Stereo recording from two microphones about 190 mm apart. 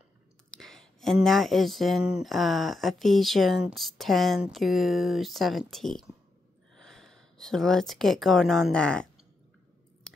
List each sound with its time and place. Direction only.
0.6 s speech: centre (ahead or behind)